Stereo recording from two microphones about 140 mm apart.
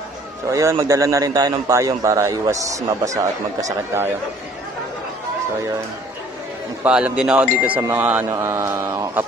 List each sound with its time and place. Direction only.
0.5 s a man's voice: 20° right (ahead or behind)
6.8 s speech: 10° right (ahead or behind)